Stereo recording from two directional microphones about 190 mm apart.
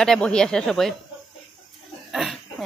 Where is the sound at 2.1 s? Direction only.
Centre (ahead or behind).